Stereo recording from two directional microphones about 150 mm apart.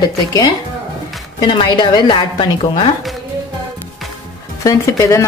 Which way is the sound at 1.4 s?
30° left (ahead or behind).